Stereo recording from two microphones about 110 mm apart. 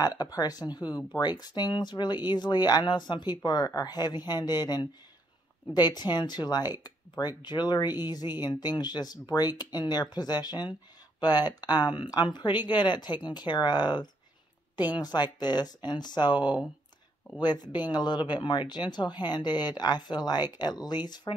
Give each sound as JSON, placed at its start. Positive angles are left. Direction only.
{"t": 0.2, "sound": "speech", "side_deg": 35}